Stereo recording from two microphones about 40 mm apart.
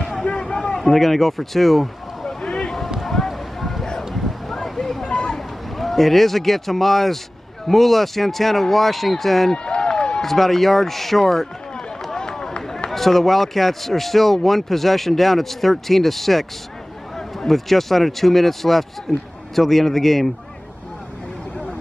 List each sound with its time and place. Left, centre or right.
0.2 s a sound: left
0.7 s speech: centre
2.2 s boat: centre
3.0 s a sound: centre
4.6 s vehicle: centre
5.0 s a sound: left
5.8 s speech: centre
9.5 s run: left
10.2 s speech: centre
17.5 s speech: centre